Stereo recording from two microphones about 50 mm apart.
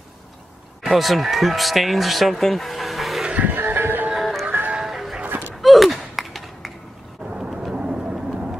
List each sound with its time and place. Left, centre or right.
0.8 s speech: centre
3.3 s music: right
4.1 s music: centre
4.5 s music: right
4.8 s music: centre
5.2 s a sound: right
5.5 s a sound: centre
7.2 s vehicle: centre